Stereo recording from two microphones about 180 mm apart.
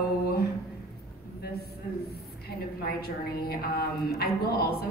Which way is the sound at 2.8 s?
60° left (ahead or behind).